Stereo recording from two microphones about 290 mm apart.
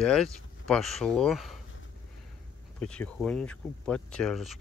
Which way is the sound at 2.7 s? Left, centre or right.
Centre.